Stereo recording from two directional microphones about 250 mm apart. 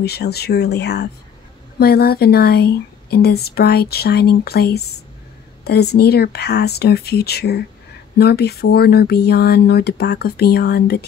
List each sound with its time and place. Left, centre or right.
0.0 s speech: left